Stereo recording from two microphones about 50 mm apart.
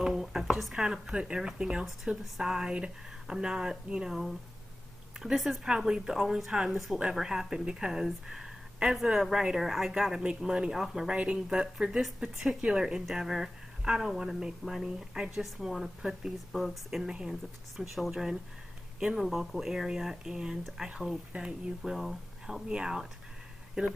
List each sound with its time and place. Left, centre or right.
0.0 s speech: centre
1.1 s speech: centre
5.2 s speech: centre
19.2 s speech: centre